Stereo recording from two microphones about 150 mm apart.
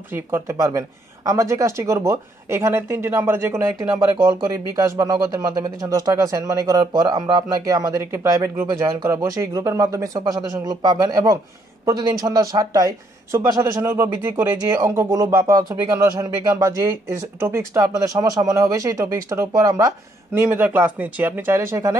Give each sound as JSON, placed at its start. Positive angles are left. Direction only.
{"t": 0.1, "sound": "speech", "side_deg": -15}